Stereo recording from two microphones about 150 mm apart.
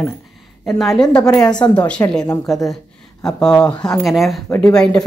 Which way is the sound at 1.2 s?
25° left (ahead or behind).